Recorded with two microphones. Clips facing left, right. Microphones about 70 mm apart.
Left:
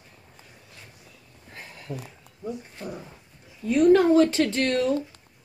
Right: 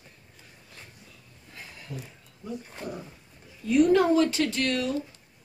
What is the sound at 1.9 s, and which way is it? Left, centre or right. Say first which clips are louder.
Speech: left 4 dB; left.